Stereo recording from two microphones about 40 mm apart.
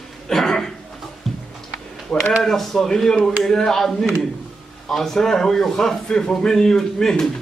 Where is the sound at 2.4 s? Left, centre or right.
Centre.